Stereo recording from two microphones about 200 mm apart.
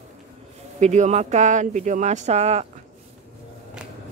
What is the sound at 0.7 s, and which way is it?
Speech, 35° right (ahead or behind).